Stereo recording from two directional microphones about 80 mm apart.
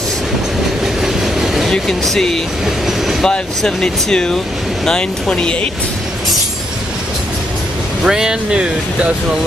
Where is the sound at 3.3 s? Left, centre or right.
Centre.